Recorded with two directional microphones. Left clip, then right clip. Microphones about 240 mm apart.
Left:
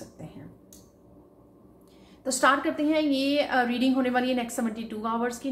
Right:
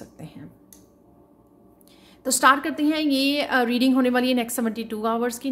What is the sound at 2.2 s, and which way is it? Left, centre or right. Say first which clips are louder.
A woman's voice: right 4 dB; right.